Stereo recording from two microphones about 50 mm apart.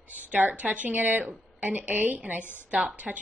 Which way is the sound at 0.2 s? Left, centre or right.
Right.